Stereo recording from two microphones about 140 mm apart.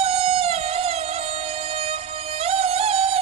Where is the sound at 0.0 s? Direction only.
45° right (ahead or behind).